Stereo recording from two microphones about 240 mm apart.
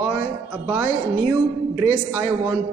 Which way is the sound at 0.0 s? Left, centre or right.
Centre.